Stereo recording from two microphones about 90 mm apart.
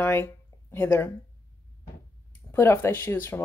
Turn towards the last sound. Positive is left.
turn(degrees=25)  # may be behind; listen again after turning